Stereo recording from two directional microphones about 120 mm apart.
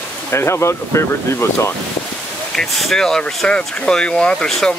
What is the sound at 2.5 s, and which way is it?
Speech, 5° left (ahead or behind).